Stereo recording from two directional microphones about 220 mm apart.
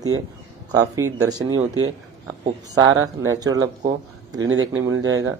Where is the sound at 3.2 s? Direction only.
15° right (ahead or behind).